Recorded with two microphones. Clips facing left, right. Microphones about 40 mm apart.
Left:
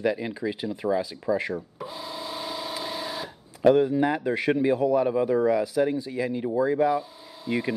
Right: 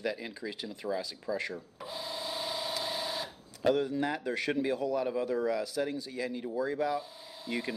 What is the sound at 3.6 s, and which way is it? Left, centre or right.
Speech, centre.